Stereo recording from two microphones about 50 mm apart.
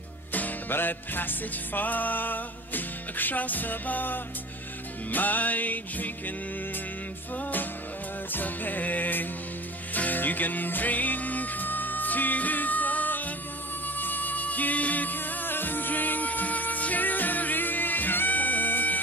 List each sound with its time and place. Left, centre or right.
0.3 s music: left
8.3 s music: left